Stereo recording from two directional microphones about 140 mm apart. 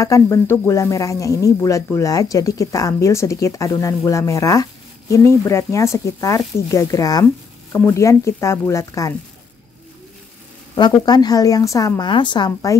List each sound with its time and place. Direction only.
0.0 s speech: 20° left (ahead or behind)
10.8 s speech: 30° left (ahead or behind)
12.1 s speech: 35° left (ahead or behind)